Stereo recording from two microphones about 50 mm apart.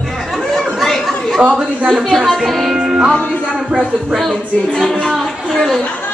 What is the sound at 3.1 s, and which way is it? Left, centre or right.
Speech, left.